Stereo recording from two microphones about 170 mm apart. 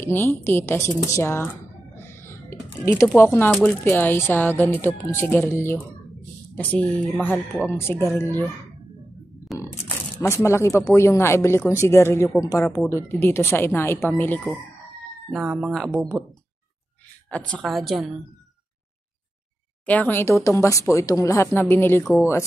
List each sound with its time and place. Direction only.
0.0 s speech: 15° left (ahead or behind)
2.0 s a sound: 15° left (ahead or behind)
2.8 s speech: 15° left (ahead or behind)
9.6 s speech: 15° left (ahead or behind)
15.7 s a woman's voice: centre (ahead or behind)
17.3 s a woman's voice: 5° left (ahead or behind)
19.9 s speech: 10° left (ahead or behind)